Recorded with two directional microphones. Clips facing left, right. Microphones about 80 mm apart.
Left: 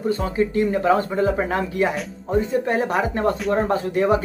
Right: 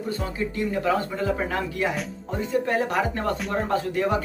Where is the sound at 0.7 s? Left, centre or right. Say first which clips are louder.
Left 5 dB; left.